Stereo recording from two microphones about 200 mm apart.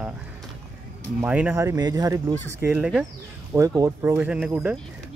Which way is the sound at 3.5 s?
15° right (ahead or behind).